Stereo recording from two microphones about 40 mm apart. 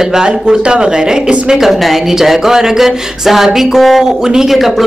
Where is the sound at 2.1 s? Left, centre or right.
Centre.